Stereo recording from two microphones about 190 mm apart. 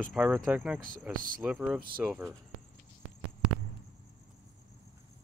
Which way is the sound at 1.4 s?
5° right (ahead or behind).